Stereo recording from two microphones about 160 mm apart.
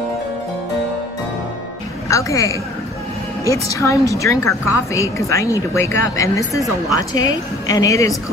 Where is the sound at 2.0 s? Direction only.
20° left (ahead or behind).